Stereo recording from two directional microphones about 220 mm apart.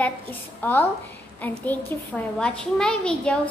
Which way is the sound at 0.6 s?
10° left (ahead or behind).